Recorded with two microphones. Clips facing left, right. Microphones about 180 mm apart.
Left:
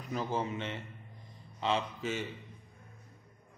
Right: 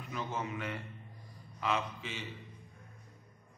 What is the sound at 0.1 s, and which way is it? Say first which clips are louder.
Speech: left 4 dB; 35° left (ahead or behind).